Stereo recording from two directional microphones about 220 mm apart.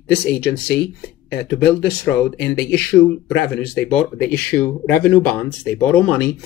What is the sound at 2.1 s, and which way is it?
Speech, 5° left (ahead or behind).